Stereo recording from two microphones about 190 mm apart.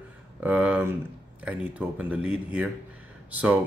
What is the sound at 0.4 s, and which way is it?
Speech, 10° right (ahead or behind).